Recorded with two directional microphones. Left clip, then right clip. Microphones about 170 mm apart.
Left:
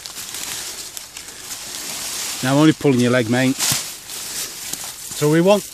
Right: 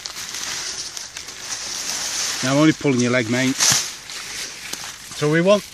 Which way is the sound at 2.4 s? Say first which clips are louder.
Left 2 dB; 45° left (ahead or behind).